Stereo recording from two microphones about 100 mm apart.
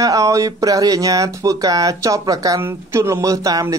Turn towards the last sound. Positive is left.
turn(degrees=-35)  # may be behind; listen again after turning